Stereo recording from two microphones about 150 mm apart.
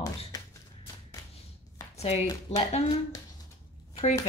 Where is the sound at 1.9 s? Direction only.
40° left (ahead or behind).